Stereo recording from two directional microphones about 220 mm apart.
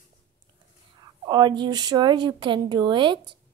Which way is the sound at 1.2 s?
20° right (ahead or behind).